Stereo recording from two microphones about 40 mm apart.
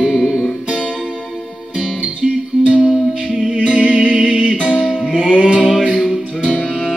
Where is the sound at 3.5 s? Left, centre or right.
Right.